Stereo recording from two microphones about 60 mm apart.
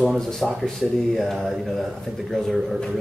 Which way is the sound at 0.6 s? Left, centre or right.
Centre.